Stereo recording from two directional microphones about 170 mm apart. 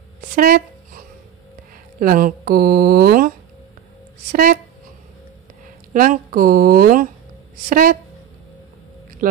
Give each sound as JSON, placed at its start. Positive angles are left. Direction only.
{"t": 0.4, "sound": "dog", "side_deg": -55}
{"t": 2.0, "sound": "a woman's voice", "side_deg": -55}
{"t": 5.9, "sound": "speech", "side_deg": -55}
{"t": 9.2, "sound": "speech", "side_deg": -55}